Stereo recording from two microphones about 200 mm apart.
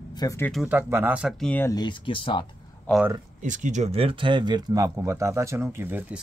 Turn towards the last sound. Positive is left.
turn(degrees=-5)  # may be behind; listen again after turning